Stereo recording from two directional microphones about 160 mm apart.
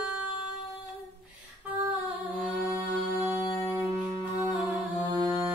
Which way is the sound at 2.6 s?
15° right (ahead or behind).